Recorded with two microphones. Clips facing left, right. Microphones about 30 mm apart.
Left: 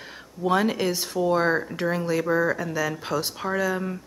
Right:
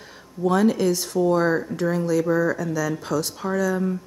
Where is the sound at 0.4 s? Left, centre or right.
Left.